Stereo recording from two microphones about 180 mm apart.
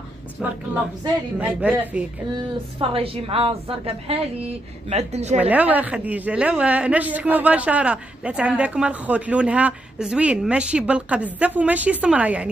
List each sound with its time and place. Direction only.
1.4 s speech: 10° right (ahead or behind)
2.3 s a woman's voice: 30° right (ahead or behind)
5.4 s speech: 10° right (ahead or behind)